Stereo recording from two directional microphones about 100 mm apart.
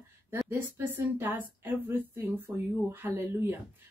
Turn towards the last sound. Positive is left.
turn(degrees=-20)  # may be behind; listen again after turning